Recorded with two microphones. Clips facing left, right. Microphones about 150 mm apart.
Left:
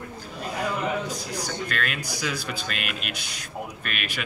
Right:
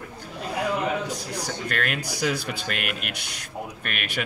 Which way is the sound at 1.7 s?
60° right (ahead or behind).